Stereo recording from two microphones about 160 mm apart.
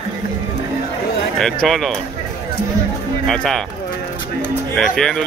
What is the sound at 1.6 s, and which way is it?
Speech, centre (ahead or behind).